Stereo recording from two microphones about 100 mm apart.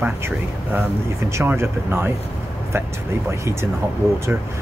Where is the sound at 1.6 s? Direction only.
25° right (ahead or behind).